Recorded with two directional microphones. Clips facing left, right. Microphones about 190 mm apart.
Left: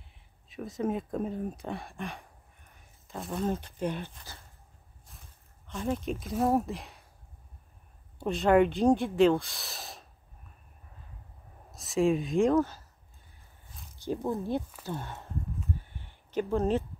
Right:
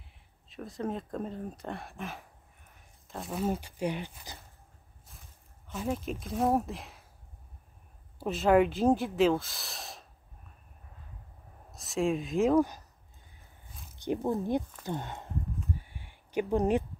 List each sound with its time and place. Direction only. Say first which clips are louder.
0.6 s speech: left 4 dB; 5° left (ahead or behind); by 4.4 s 15° right (ahead or behind)
5.7 s speech: left 2 dB; 5° right (ahead or behind)
8.2 s speech: left 1 dB; 5° right (ahead or behind)
11.7 s speech: left 3 dB; centre (ahead or behind)
14.0 s speech: right 1 dB; 15° right (ahead or behind)
15.7 s a sound: left 1 dB; 10° right (ahead or behind)